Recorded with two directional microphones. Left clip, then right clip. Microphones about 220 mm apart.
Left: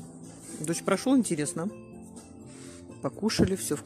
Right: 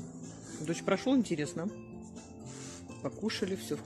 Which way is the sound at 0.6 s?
25° left (ahead or behind).